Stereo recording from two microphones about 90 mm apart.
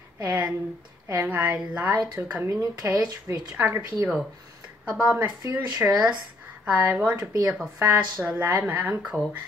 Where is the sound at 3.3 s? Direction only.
30° right (ahead or behind).